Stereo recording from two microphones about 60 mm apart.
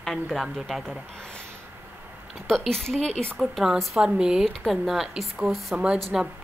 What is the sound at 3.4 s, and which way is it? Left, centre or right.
Speech, centre.